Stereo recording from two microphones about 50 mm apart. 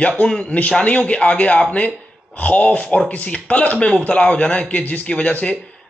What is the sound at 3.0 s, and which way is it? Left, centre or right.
Speech, left.